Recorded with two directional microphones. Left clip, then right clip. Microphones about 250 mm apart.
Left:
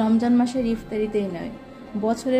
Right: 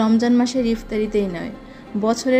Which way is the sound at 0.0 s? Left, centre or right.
Right.